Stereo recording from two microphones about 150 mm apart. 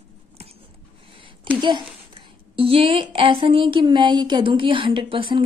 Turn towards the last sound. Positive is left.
turn(degrees=-35)  # may be behind; listen again after turning